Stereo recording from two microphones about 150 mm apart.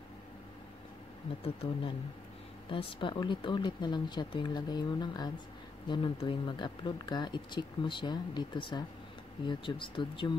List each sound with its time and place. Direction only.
1.4 s speech: 40° left (ahead or behind)